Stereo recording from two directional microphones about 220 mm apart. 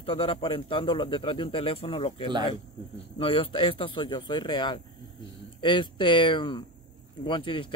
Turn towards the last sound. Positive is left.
turn(degrees=20)  # may be behind; listen again after turning